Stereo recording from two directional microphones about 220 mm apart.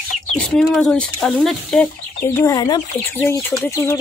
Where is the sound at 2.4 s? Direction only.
15° left (ahead or behind).